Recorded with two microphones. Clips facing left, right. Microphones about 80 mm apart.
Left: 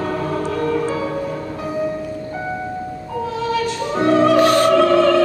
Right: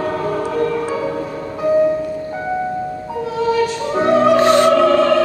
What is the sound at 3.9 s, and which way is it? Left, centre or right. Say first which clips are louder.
Music: right 1 dB; centre.